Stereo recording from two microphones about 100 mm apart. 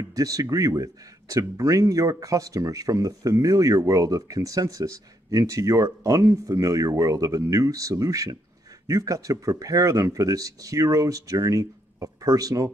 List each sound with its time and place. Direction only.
0.1 s speech: 35° right (ahead or behind)